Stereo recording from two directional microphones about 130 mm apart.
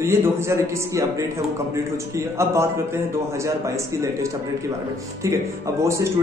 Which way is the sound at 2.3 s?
20° right (ahead or behind).